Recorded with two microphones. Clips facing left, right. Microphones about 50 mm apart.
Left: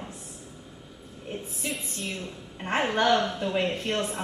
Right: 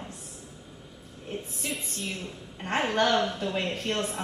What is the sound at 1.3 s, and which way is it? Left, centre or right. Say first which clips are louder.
A woman's voice: left 1 dB; centre.